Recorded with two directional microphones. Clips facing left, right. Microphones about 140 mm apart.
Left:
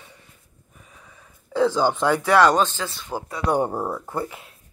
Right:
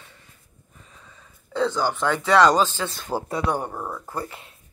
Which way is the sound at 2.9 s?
40° right (ahead or behind).